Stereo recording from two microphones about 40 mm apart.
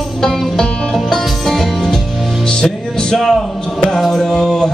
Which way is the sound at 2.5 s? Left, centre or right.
Centre.